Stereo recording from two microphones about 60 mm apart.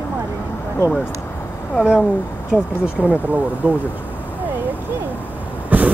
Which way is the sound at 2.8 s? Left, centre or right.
Right.